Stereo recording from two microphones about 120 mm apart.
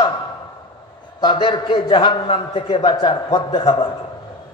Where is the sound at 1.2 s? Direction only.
45° left (ahead or behind).